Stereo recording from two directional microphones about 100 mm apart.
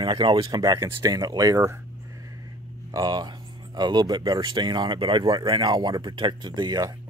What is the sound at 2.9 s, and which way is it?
Speech, 45° right (ahead or behind).